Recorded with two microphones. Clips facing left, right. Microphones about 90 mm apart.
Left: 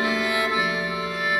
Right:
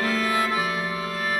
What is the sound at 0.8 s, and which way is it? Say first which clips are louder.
Music: left 1 dB; 40° right (ahead or behind).